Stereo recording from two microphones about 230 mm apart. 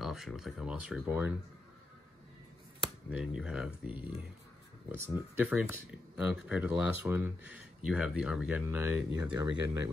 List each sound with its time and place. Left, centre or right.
0.0 s speech: centre
3.1 s speech: centre